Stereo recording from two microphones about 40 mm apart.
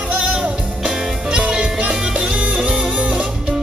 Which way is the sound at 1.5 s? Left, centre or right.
Right.